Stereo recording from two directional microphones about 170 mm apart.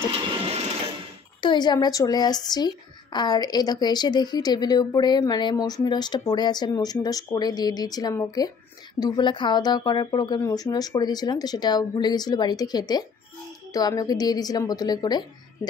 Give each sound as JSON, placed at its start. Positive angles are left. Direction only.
{"t": 1.4, "sound": "speech", "side_deg": 25}